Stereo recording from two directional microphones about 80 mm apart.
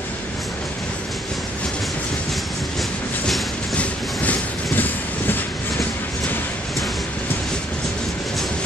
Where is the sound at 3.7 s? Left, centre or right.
Centre.